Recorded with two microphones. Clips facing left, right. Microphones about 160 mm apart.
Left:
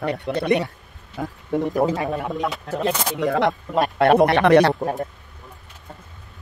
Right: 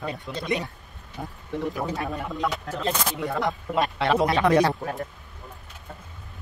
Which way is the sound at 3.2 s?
90° left.